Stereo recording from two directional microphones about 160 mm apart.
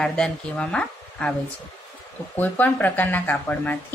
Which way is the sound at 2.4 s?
10° left (ahead or behind).